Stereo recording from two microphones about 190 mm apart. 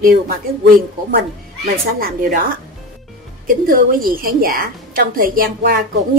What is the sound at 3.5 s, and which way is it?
A woman's voice, 50° right (ahead or behind).